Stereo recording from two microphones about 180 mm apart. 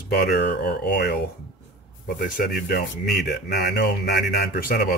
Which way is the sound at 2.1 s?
55° left (ahead or behind).